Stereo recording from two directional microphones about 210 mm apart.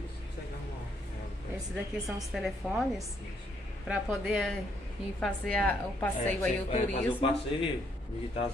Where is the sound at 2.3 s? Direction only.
Centre (ahead or behind).